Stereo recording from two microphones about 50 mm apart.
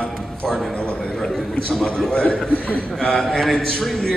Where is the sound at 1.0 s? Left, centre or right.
Centre.